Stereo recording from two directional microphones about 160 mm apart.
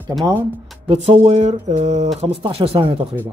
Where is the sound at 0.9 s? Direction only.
40° right (ahead or behind).